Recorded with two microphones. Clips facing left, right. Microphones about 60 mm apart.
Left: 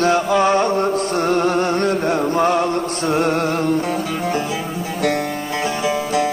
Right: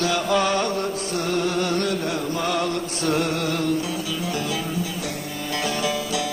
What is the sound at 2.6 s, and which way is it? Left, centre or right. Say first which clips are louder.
Music: left 5 dB; left.